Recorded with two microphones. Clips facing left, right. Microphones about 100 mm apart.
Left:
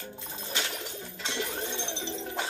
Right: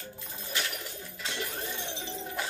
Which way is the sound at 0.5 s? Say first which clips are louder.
Left 1 dB; 25° left (ahead or behind).